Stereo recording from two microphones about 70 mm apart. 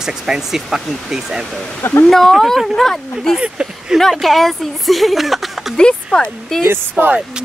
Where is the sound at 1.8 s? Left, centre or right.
Left.